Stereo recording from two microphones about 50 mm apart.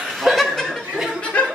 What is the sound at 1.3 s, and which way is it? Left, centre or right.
Chuckle, left.